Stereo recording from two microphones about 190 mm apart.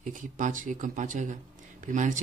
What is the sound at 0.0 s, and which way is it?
A man's voice, 45° right (ahead or behind).